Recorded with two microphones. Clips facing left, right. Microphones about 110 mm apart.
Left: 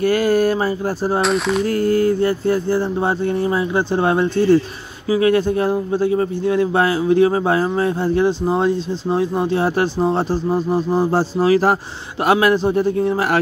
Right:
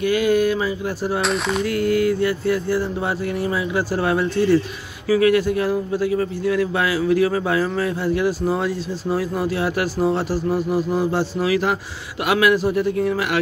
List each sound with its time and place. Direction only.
0.0 s speech: 40° left (ahead or behind)
1.2 s speech: centre (ahead or behind)
1.7 s a man's voice: 35° left (ahead or behind)